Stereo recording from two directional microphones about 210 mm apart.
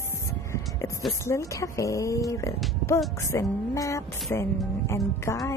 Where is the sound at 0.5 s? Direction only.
15° left (ahead or behind).